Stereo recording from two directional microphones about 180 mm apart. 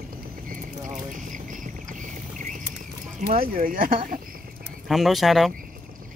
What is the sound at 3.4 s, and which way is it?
Speech, 50° right (ahead or behind).